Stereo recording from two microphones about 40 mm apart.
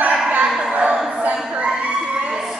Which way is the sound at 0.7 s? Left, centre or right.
Right.